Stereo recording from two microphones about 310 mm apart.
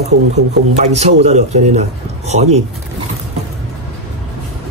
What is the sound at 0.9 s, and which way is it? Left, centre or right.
A man's voice, right.